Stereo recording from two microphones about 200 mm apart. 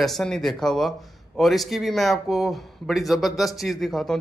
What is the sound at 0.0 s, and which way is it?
Speech, centre (ahead or behind).